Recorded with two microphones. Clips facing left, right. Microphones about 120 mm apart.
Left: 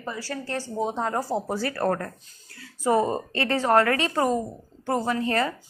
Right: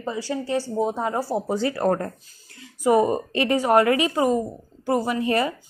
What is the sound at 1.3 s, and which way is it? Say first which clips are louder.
A woman's voice: right 3 dB; 20° right (ahead or behind).